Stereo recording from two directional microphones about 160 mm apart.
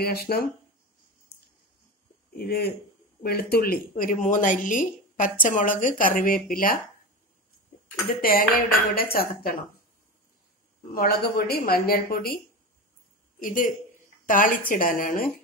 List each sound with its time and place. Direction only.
0.0 s a woman's voice: 75° left (ahead or behind)
2.3 s a woman's voice: 75° left (ahead or behind)
8.2 s speech: 65° left (ahead or behind)
11.0 s a woman's voice: 75° left (ahead or behind)
13.4 s a woman's voice: 55° left (ahead or behind)